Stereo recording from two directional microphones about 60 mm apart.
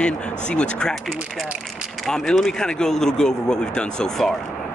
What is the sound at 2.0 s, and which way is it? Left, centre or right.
Speech, centre.